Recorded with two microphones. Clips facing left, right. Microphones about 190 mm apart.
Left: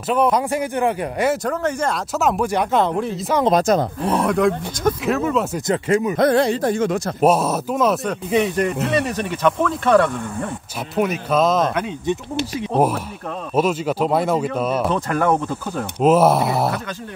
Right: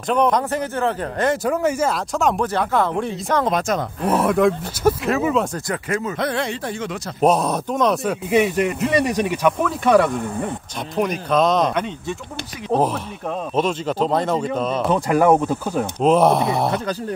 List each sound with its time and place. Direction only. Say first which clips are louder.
0.1 s speech: even; 5° left (ahead or behind)
1.4 s speech: right 2 dB; 10° right (ahead or behind)
2.1 s speech: left 1 dB; 5° left (ahead or behind)
2.5 s speech: left 2 dB; 20° left (ahead or behind)
2.9 s speech: left 1 dB; centre (ahead or behind)
3.4 s speech: left 5 dB; 35° left (ahead or behind)
4.1 s speech: right 2 dB; centre (ahead or behind)
5.7 s speech: left 5 dB; 25° left (ahead or behind)
6.1 s speech: left 7 dB; 40° left (ahead or behind)
7.2 s speech: even; 5° left (ahead or behind)
11.0 s speech: even; 5° left (ahead or behind)
12.1 s speech: left 7 dB; 15° left (ahead or behind)
15.0 s speech: right 4 dB; 10° right (ahead or behind)
16.0 s speech: left 1 dB; 5° left (ahead or behind)